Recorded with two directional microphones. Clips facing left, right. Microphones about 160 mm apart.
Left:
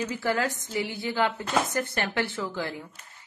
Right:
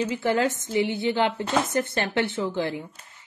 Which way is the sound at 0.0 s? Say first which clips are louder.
Right 4 dB; 25° right (ahead or behind).